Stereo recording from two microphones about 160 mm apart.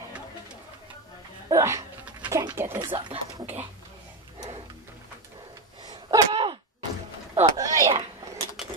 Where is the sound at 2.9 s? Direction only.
30° right (ahead or behind).